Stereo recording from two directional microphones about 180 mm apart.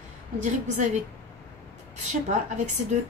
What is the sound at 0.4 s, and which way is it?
Speech, 40° right (ahead or behind).